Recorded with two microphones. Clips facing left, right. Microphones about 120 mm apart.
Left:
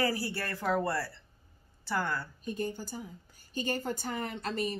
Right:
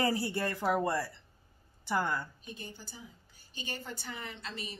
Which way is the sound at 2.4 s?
45° left (ahead or behind).